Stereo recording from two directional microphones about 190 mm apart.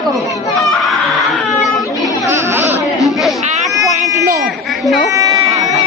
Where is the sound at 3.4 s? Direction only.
35° right (ahead or behind).